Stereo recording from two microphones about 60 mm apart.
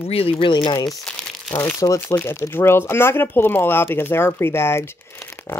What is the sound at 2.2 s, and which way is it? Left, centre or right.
Speech, left.